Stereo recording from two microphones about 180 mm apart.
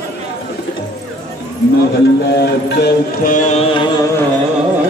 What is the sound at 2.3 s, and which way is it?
Music, 65° left (ahead or behind).